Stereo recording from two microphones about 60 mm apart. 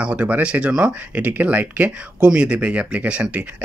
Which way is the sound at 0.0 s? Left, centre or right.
Right.